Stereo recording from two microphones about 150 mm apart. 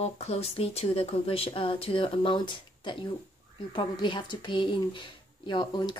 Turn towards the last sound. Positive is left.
turn(degrees=30)  # may be behind; listen again after turning